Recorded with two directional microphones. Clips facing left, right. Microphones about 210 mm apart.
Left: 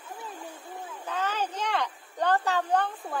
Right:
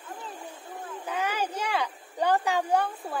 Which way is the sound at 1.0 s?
10° right (ahead or behind).